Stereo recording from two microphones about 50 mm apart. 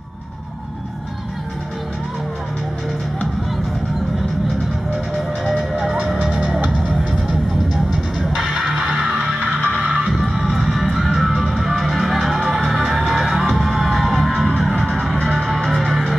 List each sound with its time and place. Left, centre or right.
4.9 s music: centre
5.6 s music: centre
6.9 s music: centre